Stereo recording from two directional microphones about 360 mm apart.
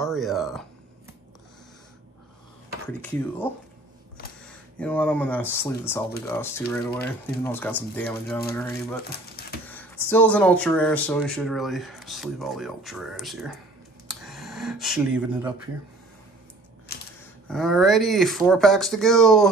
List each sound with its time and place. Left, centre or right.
0.0 s speech: centre
3.0 s speech: centre
4.5 s speech: centre
6.9 s speech: left
7.4 s speech: centre
10.0 s speech: centre
14.0 s a sound: centre
17.5 s speech: centre